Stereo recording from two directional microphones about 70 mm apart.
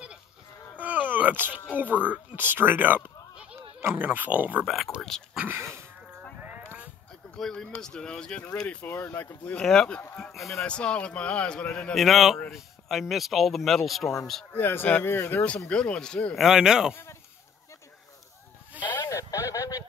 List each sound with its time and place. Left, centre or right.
0.7 s groan: right
1.7 s speech: right
5.1 s a man's voice: centre
7.3 s a man's voice: centre
8.8 s speech: left
9.4 s a man's voice: centre
10.3 s speech: centre
10.6 s a man's voice: centre
11.9 s speech: centre
14.5 s speech: left
15.4 s a man's voice: centre
16.3 s speech: centre
16.9 s goat: left
18.9 s a sound: left